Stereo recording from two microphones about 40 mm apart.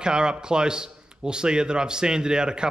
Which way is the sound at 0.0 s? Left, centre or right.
Right.